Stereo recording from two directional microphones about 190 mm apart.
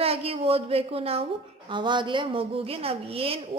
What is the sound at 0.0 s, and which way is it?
A woman's voice, 30° right (ahead or behind).